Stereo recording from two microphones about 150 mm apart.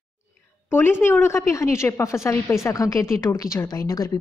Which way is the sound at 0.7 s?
15° left (ahead or behind).